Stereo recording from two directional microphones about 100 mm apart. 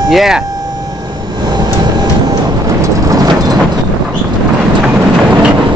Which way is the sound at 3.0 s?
40° right (ahead or behind).